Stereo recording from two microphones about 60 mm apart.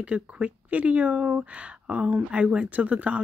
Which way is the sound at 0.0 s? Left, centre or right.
Right.